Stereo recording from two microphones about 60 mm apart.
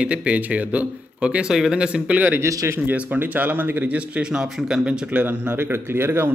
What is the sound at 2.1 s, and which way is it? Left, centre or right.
Speech, right.